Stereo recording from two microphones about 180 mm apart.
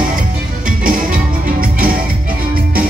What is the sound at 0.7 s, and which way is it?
Music, 50° right (ahead or behind).